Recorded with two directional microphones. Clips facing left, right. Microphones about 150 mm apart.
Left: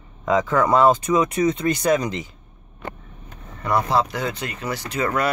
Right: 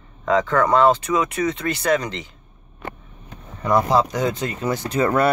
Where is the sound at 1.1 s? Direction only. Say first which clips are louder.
Left 2 dB; 25° left (ahead or behind).